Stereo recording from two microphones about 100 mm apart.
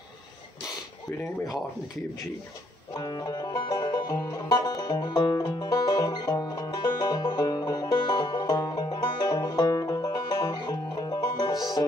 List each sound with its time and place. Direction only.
2.9 s music: 40° left (ahead or behind)